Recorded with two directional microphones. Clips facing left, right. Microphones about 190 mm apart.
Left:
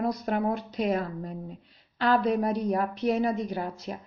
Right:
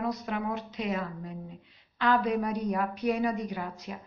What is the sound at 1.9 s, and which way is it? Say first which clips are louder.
A woman's voice: left 2 dB; 35° left (ahead or behind).